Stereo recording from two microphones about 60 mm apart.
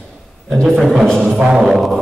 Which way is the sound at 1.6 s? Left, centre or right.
Centre.